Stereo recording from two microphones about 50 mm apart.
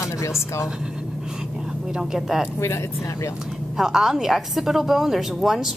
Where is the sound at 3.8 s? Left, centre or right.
Centre.